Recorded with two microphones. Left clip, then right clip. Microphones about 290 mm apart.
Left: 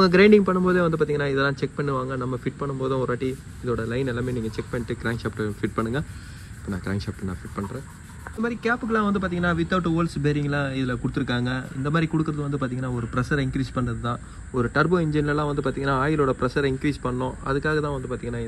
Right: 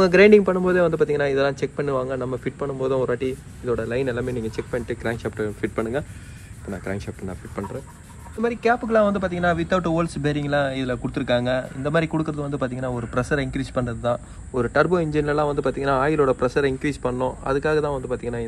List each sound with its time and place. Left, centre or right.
0.1 s speech: centre
2.1 s speech: right
3.1 s speech: centre